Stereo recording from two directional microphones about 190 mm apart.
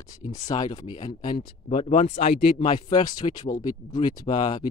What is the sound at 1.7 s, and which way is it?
Speech, 40° left (ahead or behind).